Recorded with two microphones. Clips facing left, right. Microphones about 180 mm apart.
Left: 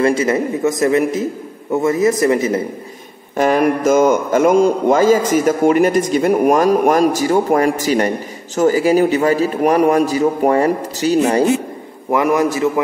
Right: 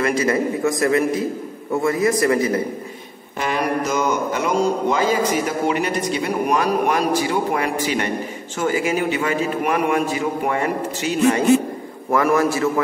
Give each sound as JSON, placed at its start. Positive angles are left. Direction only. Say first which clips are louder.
{"t": 0.0, "sound": "a man's voice", "louder": "left 4 dB", "side_deg": 25}
{"t": 3.3, "sound": "a man's voice", "louder": "left 7 dB", "side_deg": 45}
{"t": 12.1, "sound": "a man's voice", "louder": "left 2 dB", "side_deg": 20}